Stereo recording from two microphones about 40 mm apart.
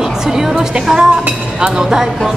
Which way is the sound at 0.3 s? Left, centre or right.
Centre.